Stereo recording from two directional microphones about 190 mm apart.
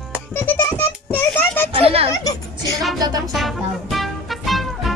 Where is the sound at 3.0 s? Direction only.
20° right (ahead or behind).